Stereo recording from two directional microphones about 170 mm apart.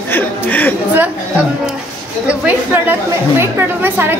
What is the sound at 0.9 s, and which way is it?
A woman's voice, 10° right (ahead or behind).